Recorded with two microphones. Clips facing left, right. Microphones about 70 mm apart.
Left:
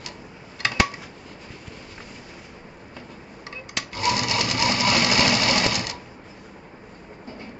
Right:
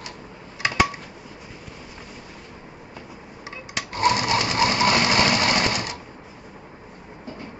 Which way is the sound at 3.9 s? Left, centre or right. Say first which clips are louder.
Right 4 dB; right.